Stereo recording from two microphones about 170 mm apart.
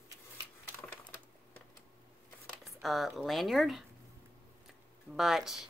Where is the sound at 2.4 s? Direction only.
Centre (ahead or behind).